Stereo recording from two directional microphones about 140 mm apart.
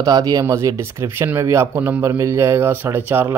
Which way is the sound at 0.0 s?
25° right (ahead or behind).